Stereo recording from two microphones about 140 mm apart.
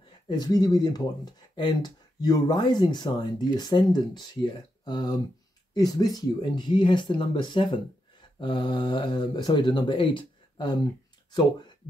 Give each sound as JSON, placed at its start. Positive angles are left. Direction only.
{"t": 0.3, "sound": "speech", "side_deg": 30}